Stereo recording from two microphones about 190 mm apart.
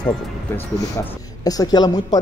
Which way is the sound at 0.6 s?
15° left (ahead or behind).